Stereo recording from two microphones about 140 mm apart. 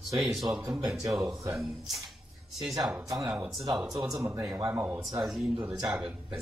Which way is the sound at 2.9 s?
25° right (ahead or behind).